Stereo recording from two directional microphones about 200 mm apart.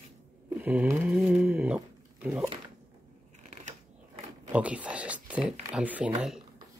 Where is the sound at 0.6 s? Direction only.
10° right (ahead or behind).